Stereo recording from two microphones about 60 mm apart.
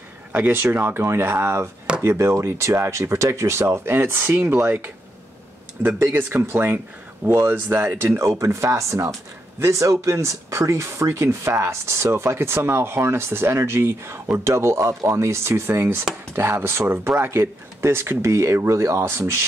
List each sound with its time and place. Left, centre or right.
0.3 s speech: right
1.0 s speech: right
5.9 s speech: right
8.2 s speech: right
19.0 s speech: right